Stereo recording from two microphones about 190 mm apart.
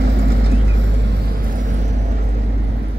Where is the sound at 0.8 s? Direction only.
65° right (ahead or behind); by 1.9 s 40° right (ahead or behind).